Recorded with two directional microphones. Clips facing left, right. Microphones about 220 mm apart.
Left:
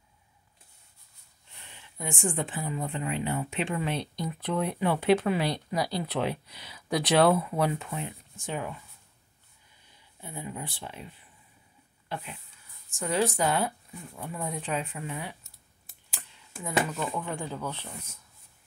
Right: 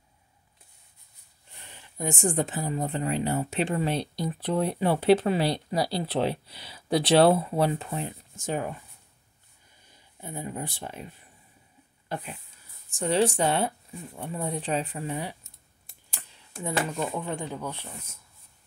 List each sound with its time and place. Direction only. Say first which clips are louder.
1.7 s speech: right 5 dB; 40° right (ahead or behind)
10.2 s speech: right 3 dB; 45° right (ahead or behind)
12.9 s speech: right 4 dB; 30° right (ahead or behind)
17.1 s speech: right 2 dB; 20° right (ahead or behind)